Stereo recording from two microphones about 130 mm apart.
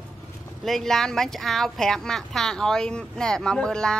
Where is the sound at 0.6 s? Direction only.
Centre (ahead or behind).